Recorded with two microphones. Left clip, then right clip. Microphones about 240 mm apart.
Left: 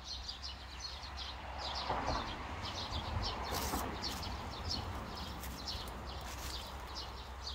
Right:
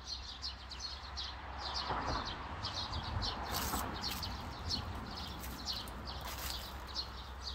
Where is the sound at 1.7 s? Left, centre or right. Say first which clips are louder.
Even; left.